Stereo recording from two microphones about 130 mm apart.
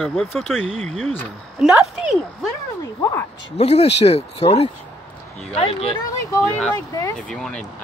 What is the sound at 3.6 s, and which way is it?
Speech, 55° left (ahead or behind).